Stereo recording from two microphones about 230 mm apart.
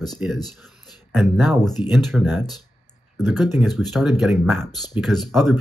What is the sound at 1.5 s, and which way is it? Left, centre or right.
Speech, centre.